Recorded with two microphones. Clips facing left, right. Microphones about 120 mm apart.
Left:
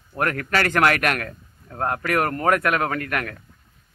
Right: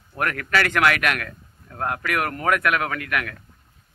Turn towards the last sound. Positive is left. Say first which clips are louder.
# left 1 dB
turn(degrees=40)  # may be behind; listen again after turning